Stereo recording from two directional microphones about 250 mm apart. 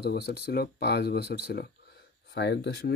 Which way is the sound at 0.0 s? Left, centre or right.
Left.